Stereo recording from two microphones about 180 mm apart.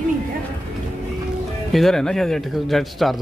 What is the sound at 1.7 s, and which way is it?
Speech, centre (ahead or behind).